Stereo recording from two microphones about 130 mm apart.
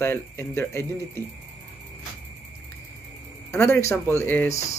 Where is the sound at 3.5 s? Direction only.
20° left (ahead or behind).